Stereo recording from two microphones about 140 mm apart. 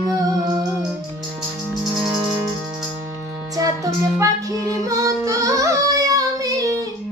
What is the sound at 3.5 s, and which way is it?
Music, 25° right (ahead or behind).